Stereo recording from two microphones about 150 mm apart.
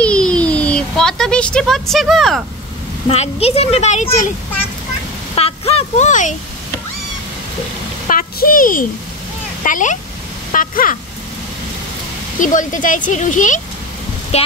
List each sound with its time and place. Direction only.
0.0 s a sound: 5° left (ahead or behind)
3.1 s a woman's voice: 40° left (ahead or behind)
5.3 s speech: 40° left (ahead or behind)
8.1 s a sound: 70° left (ahead or behind)
9.6 s speech: 60° left (ahead or behind)
12.4 s speech: 60° left (ahead or behind)
14.3 s speech: 45° left (ahead or behind)